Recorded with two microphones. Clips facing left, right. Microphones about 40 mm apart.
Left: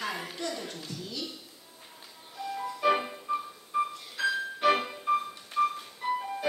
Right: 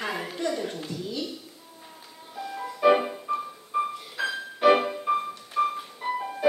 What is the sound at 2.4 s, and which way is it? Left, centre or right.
Music, centre.